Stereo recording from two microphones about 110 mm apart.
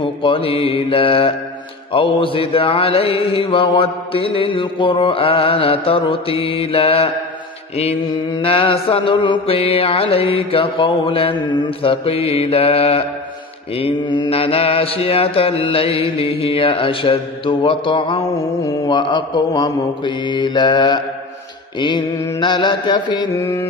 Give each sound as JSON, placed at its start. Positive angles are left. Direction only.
{"t": 0.0, "sound": "mantra", "side_deg": 55}
{"t": 7.7, "sound": "mantra", "side_deg": 70}
{"t": 14.3, "sound": "mantra", "side_deg": 60}
{"t": 23.4, "sound": "music", "side_deg": 20}